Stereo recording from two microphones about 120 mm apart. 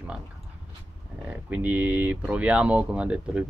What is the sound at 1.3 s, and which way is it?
Speech, 10° right (ahead or behind).